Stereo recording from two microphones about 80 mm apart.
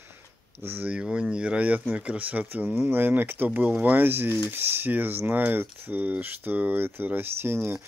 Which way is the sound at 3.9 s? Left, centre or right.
Right.